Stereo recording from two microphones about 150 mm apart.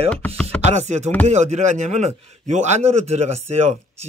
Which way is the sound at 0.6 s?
50° right (ahead or behind).